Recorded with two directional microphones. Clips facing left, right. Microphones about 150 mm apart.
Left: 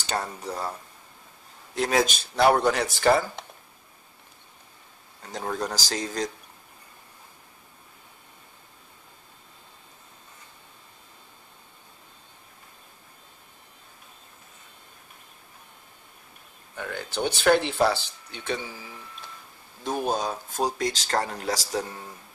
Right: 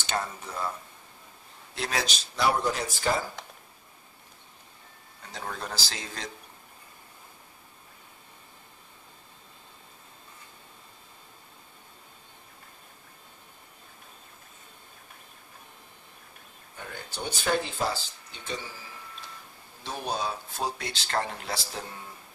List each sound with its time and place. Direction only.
0.1 s speech: 35° left (ahead or behind)
1.8 s speech: 50° left (ahead or behind); by 3.3 s 70° left (ahead or behind)
5.3 s speech: 40° left (ahead or behind)
16.7 s speech: 75° left (ahead or behind)
19.8 s speech: 45° left (ahead or behind)